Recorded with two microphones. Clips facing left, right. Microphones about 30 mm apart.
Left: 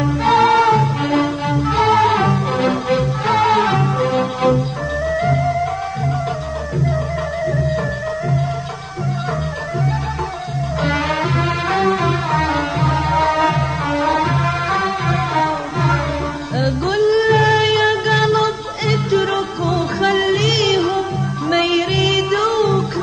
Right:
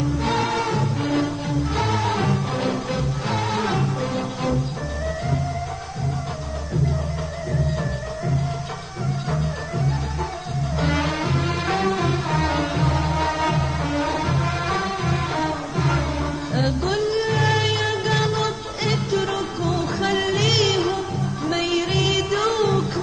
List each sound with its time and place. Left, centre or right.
0.2 s music: centre; by 1.8 s left
1.8 s music: left
10.8 s music: centre
21.5 s music: centre